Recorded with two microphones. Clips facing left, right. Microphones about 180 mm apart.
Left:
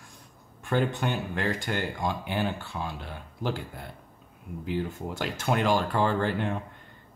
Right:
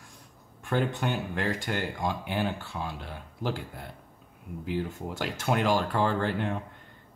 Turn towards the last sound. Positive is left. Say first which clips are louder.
# left 1 dB
turn(degrees=0)  # may be behind; listen again after turning